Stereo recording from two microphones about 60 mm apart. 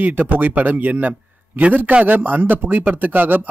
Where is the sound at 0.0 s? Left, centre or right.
Right.